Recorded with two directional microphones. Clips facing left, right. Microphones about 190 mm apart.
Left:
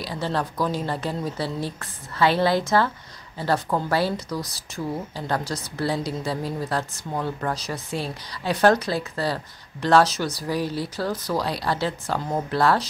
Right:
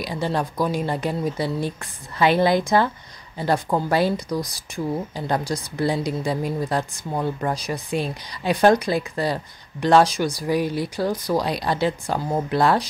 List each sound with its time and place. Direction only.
0.0 s speech: 15° right (ahead or behind)